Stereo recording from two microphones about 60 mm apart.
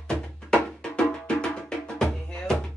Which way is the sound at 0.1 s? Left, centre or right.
Centre.